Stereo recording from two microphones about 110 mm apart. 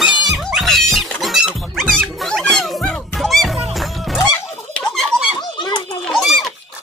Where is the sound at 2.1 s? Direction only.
5° left (ahead or behind).